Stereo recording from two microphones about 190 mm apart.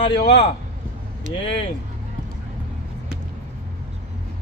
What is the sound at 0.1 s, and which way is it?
Speech, 65° left (ahead or behind).